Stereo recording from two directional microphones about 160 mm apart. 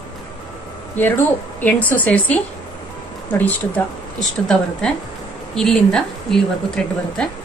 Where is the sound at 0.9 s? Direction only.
10° left (ahead or behind).